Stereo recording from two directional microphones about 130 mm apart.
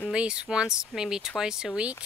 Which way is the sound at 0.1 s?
10° right (ahead or behind).